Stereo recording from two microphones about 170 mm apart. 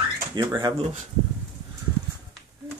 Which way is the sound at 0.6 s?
30° right (ahead or behind).